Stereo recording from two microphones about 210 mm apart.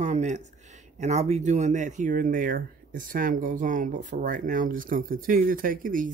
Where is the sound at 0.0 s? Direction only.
35° right (ahead or behind).